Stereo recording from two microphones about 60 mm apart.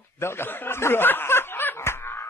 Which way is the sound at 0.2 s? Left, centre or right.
Left.